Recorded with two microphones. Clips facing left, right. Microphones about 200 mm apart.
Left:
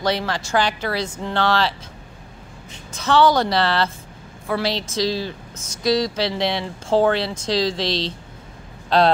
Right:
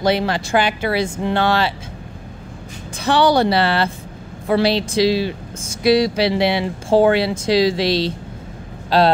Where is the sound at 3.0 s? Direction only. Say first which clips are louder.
Right 1 dB; 10° right (ahead or behind).